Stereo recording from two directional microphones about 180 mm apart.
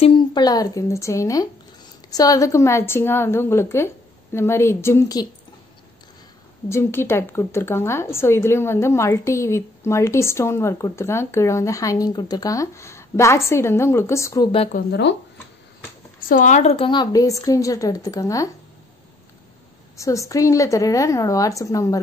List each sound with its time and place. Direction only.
0.0 s a woman's voice: 25° left (ahead or behind)
6.7 s speech: 15° left (ahead or behind)
14.9 s speech: 70° left (ahead or behind)
16.3 s a woman's voice: 45° left (ahead or behind); by 18.5 s 15° left (ahead or behind)
20.0 s speech: 15° left (ahead or behind)